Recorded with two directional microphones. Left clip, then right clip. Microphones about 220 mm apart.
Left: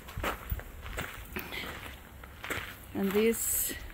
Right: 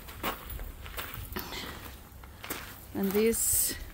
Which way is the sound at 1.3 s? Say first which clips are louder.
Even; 15° right (ahead or behind).